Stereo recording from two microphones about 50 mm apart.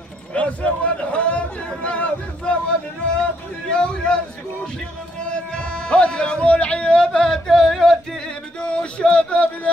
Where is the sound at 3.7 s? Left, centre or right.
Centre.